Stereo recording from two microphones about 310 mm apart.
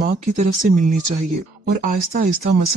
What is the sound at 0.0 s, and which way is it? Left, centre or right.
Speech, right.